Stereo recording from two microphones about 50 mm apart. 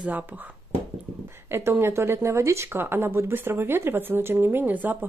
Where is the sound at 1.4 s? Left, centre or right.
Right.